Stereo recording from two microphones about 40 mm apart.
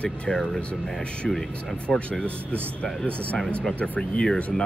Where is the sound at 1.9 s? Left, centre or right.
Left.